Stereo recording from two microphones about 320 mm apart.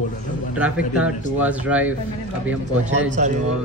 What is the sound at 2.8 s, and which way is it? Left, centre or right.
Speech, right.